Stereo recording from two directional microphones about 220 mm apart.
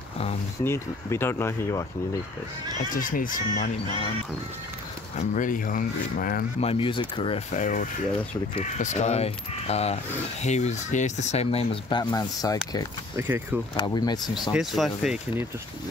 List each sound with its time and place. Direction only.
0.7 s speech: 10° left (ahead or behind)
2.8 s speech: 40° left (ahead or behind)
5.1 s speech: 35° left (ahead or behind)
6.6 s speech: 25° left (ahead or behind)
13.1 s speech: 10° right (ahead or behind)
13.7 s speech: 20° left (ahead or behind)
14.5 s speech: centre (ahead or behind)